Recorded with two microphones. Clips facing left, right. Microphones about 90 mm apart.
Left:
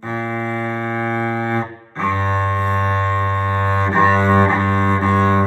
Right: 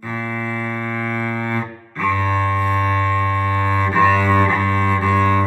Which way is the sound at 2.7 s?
35° left (ahead or behind).